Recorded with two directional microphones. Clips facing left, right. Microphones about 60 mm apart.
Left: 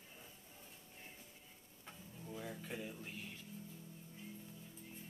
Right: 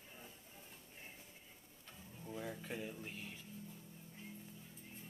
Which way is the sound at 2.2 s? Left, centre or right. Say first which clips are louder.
Right 2 dB; centre.